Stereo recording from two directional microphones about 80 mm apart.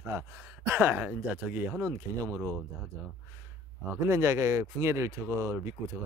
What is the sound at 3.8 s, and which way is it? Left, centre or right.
Speech, right.